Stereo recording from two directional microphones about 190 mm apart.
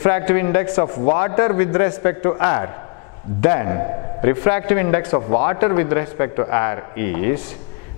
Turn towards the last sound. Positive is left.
turn(degrees=15)  # may be behind; listen again after turning